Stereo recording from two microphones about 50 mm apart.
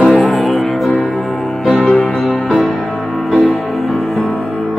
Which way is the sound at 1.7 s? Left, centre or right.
Left.